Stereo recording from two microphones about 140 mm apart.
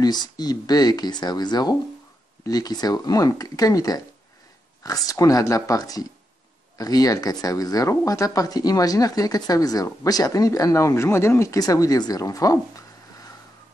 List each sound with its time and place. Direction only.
0.0 s speech: 30° left (ahead or behind)